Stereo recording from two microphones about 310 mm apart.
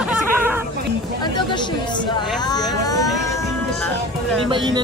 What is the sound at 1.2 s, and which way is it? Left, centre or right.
Speech, centre.